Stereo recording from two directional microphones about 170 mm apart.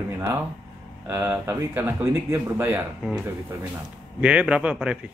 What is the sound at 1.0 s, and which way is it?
Speech, 15° right (ahead or behind).